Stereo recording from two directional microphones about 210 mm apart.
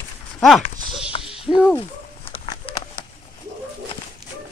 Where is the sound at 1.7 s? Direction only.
25° left (ahead or behind).